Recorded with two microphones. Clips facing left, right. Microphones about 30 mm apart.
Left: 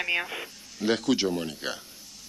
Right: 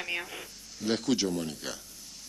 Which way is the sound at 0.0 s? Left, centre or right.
Left.